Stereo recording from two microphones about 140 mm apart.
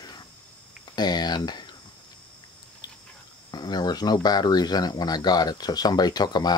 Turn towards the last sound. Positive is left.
turn(degrees=30)  # may be behind; listen again after turning